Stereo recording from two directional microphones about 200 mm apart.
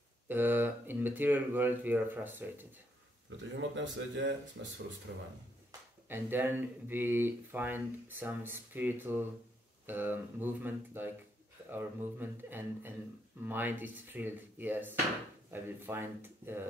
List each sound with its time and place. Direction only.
0.3 s speech: 10° right (ahead or behind)
3.3 s a man's voice: 65° right (ahead or behind)
5.7 s speech: 10° right (ahead or behind)